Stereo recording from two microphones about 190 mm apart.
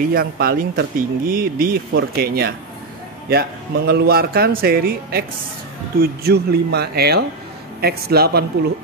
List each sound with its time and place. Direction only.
0.1 s speech: 50° right (ahead or behind)
3.7 s speech: 60° right (ahead or behind)